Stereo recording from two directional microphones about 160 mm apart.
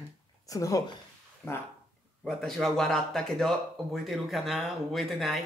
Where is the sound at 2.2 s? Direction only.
Centre (ahead or behind).